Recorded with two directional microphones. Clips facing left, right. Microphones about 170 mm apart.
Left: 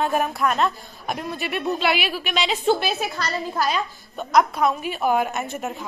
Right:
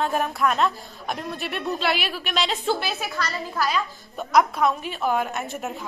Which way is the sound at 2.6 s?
20° left (ahead or behind).